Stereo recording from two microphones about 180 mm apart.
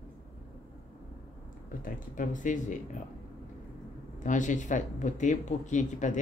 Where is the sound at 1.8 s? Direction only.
45° left (ahead or behind).